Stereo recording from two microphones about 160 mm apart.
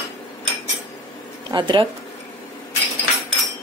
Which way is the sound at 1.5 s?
30° right (ahead or behind).